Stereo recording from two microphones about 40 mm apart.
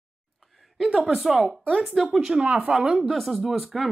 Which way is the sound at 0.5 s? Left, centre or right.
Centre.